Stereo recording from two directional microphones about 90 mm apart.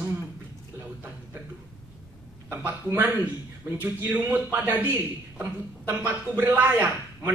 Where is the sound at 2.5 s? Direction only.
20° right (ahead or behind).